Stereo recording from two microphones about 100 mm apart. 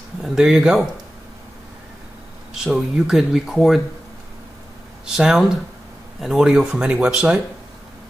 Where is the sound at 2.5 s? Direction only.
5° right (ahead or behind).